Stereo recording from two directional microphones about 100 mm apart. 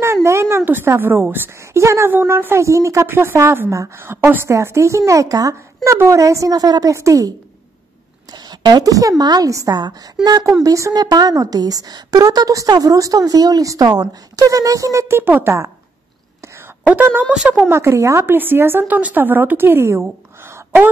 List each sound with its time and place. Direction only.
0.0 s a woman's voice: 25° right (ahead or behind)
8.3 s a woman's voice: 45° right (ahead or behind); by 15.5 s 20° right (ahead or behind)
16.3 s whispering: 25° right (ahead or behind)
17.3 s speech: 10° right (ahead or behind)
17.6 s a woman's voice: 25° right (ahead or behind)